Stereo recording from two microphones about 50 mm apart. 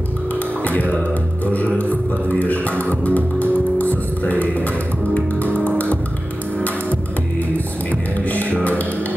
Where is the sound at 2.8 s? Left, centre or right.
Left.